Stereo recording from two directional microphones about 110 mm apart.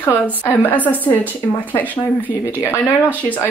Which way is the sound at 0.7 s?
15° left (ahead or behind).